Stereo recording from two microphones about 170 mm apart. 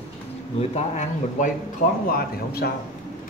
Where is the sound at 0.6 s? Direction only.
40° left (ahead or behind).